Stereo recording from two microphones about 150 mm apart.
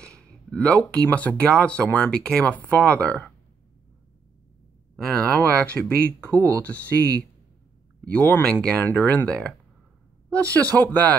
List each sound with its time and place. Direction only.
0.0 s speech: 5° left (ahead or behind)
4.9 s speech: 5° left (ahead or behind)
6.2 s speech: 20° right (ahead or behind)
6.6 s speech: 10° left (ahead or behind)
10.7 s speech: 10° left (ahead or behind)